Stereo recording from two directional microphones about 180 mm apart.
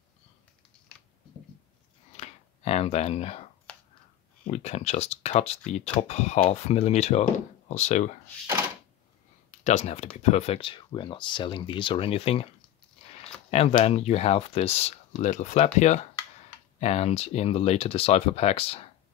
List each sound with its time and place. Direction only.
2.1 s a sound: 35° left (ahead or behind)
4.5 s speech: 35° left (ahead or behind)
9.5 s speech: 40° left (ahead or behind)